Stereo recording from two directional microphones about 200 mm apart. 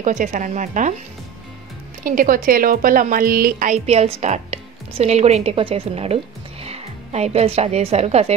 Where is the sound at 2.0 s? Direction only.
45° right (ahead or behind).